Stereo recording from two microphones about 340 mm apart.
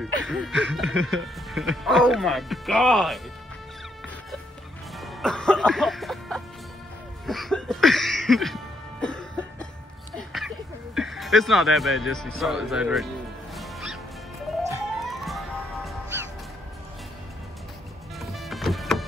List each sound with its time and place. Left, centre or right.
0.3 s speech: centre
4.9 s music: centre
9.0 s cough: centre
10.1 s music: centre
11.0 s speech: centre
13.6 s music: centre
18.2 s music: centre